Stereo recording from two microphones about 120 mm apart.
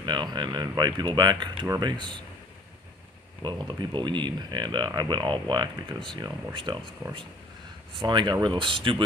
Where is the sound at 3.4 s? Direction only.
40° right (ahead or behind).